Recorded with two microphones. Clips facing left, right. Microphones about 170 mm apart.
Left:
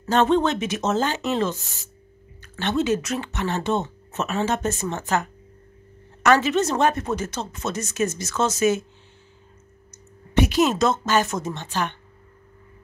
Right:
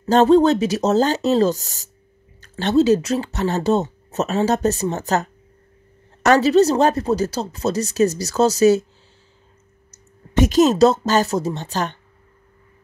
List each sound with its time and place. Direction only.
0.0 s speech: 35° right (ahead or behind)
6.2 s speech: 40° right (ahead or behind)
10.4 s speech: 40° right (ahead or behind)